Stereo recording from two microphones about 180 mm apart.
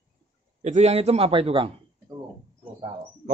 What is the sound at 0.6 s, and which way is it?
A man's voice, 40° right (ahead or behind).